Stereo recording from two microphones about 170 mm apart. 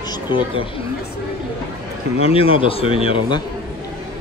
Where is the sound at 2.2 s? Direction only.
35° left (ahead or behind).